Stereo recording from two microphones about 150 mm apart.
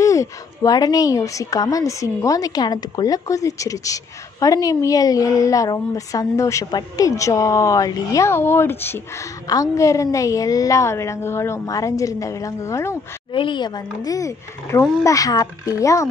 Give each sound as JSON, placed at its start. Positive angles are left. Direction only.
{"t": 0.0, "sound": "a woman's voice", "side_deg": 20}
{"t": 13.3, "sound": "a woman's voice", "side_deg": 35}